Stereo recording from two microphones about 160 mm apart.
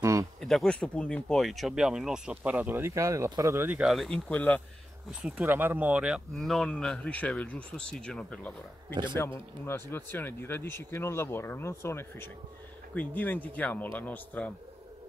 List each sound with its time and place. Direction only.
0.0 s a sound: 20° right (ahead or behind)
0.4 s speech: centre (ahead or behind)
5.2 s speech: 10° right (ahead or behind); by 14.5 s 10° left (ahead or behind)